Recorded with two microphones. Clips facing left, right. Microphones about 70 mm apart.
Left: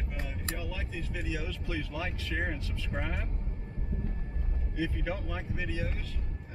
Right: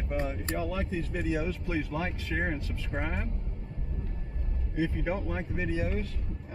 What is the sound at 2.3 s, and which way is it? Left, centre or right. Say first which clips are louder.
Speech: right 3 dB; centre.